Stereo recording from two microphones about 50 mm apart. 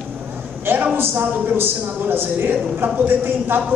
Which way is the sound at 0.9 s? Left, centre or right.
Right.